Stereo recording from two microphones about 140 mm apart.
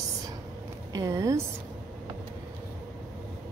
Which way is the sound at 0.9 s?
25° right (ahead or behind).